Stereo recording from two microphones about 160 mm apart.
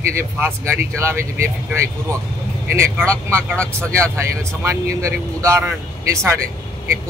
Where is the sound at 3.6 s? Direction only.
5° left (ahead or behind).